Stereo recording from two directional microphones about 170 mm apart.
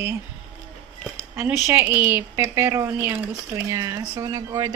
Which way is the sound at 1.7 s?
10° right (ahead or behind).